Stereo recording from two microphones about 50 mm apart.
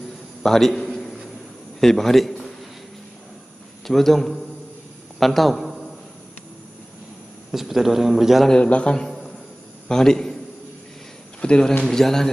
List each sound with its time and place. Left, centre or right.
0.4 s a sound: centre
1.8 s a man's voice: centre
3.8 s a man's voice: centre
7.5 s speech: centre
8.5 s a man's voice: left
9.8 s a man's voice: centre
11.4 s a man's voice: centre